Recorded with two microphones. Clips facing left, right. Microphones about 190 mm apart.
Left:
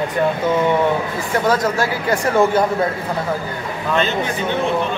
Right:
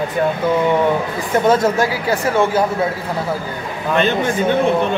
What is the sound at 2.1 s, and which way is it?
Speech, 5° right (ahead or behind).